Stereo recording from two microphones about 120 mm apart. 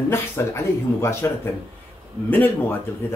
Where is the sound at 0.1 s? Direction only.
20° left (ahead or behind).